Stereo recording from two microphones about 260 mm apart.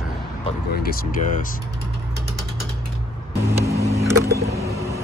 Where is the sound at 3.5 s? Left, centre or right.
Centre.